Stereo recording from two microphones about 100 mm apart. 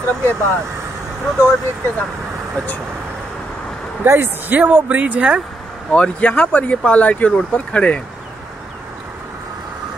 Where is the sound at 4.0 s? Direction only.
20° right (ahead or behind).